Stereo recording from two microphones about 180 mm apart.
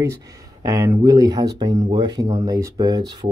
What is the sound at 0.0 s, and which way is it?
Speech, 15° right (ahead or behind).